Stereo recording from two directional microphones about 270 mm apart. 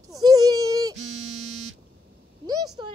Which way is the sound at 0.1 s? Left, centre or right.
Centre.